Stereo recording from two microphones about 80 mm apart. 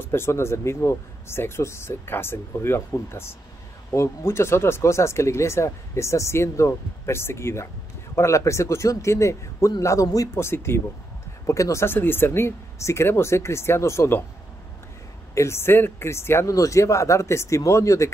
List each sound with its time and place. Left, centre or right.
0.0 s speech: left
10.3 s speech: left
15.3 s speech: left